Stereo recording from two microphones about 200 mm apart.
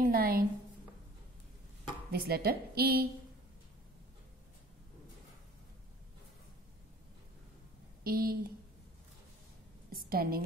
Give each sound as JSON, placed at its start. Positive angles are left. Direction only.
{"t": 0.0, "sound": "a woman's voice", "side_deg": -50}
{"t": 2.1, "sound": "a woman's voice", "side_deg": -50}
{"t": 8.0, "sound": "a woman's voice", "side_deg": -45}
{"t": 9.8, "sound": "a sound", "side_deg": -50}